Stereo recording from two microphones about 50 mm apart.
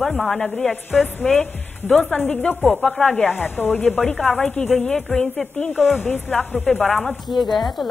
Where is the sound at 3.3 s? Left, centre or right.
Left.